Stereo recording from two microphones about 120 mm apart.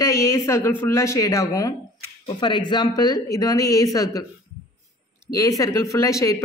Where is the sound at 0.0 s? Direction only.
25° left (ahead or behind).